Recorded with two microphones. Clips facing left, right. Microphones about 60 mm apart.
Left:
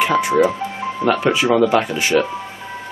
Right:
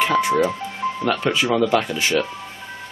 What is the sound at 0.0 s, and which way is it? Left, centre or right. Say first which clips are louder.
Speech: left 3 dB; centre.